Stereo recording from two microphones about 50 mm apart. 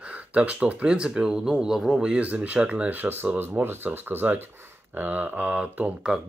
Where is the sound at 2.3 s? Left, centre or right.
Right.